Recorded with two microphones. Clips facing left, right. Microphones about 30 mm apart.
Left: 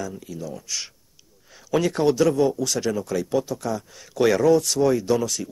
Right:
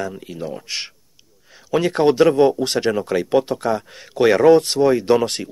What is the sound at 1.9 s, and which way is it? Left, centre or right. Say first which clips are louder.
Speech: right 7 dB; right.